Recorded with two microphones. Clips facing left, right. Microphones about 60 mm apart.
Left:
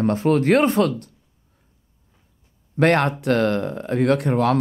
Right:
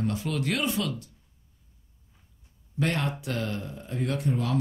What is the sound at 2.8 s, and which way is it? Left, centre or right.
Speech, left.